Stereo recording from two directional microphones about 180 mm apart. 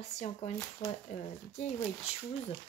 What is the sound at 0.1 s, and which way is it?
A woman's voice, 40° left (ahead or behind).